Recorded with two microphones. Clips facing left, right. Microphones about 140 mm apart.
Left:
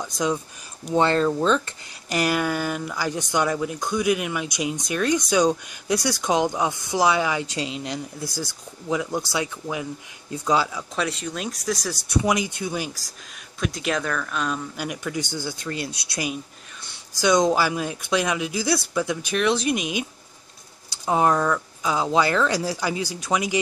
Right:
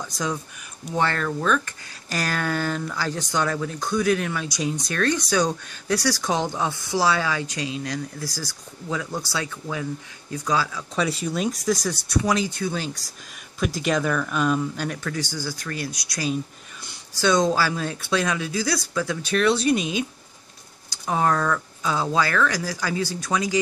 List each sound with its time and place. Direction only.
0.0 s speech: 20° left (ahead or behind)
11.0 s speech: 5° right (ahead or behind)
11.9 s speech: 20° left (ahead or behind)
13.6 s speech: centre (ahead or behind)
14.8 s speech: 15° left (ahead or behind)